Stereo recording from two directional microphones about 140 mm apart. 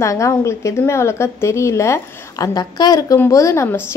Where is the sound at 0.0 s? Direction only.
20° left (ahead or behind).